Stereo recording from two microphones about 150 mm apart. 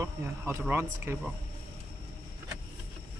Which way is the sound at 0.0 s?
15° right (ahead or behind).